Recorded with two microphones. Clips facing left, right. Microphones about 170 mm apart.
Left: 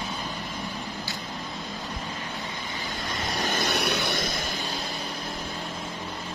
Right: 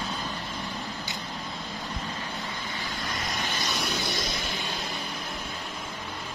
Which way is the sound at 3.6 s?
65° left (ahead or behind).